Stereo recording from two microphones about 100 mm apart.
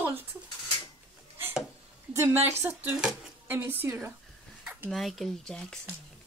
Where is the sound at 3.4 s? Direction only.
20° right (ahead or behind).